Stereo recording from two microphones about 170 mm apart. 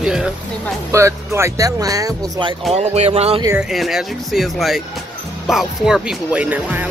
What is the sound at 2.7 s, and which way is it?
Speech, 40° right (ahead or behind).